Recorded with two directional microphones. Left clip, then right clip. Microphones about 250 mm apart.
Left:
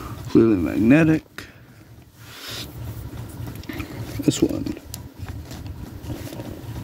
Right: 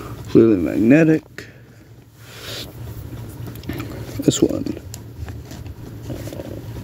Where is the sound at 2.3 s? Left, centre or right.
Centre.